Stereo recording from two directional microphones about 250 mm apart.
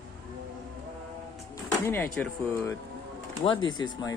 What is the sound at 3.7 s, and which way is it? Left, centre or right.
Speech, centre.